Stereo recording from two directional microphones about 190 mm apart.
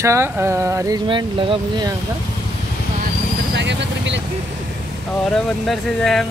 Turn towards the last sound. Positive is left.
turn(degrees=0)  # may be behind; listen again after turning